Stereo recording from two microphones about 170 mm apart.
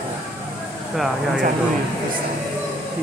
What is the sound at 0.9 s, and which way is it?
Speech, centre (ahead or behind).